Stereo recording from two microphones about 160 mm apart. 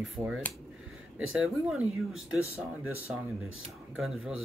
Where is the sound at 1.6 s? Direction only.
5° right (ahead or behind).